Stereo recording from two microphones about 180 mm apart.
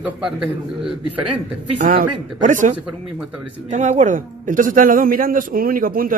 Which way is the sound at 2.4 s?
45° right (ahead or behind).